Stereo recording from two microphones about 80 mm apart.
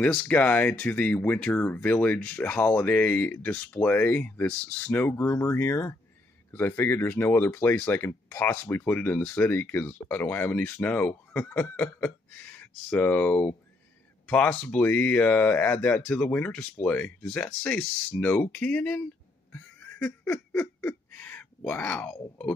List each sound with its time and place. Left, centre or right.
0.0 s speech: centre
19.5 s snicker: centre
21.1 s a sound: left